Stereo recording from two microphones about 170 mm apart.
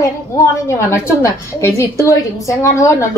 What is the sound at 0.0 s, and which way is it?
A woman's voice, 15° left (ahead or behind).